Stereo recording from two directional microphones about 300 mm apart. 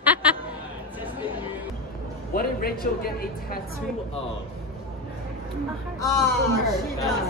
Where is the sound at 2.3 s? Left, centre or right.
Left.